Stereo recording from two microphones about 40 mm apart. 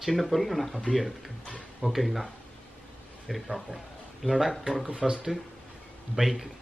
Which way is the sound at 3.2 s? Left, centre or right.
Centre.